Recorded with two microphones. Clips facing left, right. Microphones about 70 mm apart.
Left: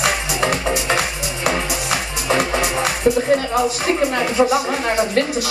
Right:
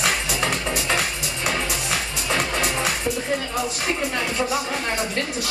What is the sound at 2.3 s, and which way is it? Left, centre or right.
Music, centre.